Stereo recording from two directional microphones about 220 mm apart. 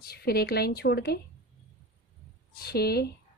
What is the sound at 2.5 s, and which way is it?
Speech, 45° left (ahead or behind).